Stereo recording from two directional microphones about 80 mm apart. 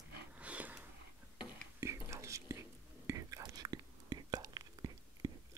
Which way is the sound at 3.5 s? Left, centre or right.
Right.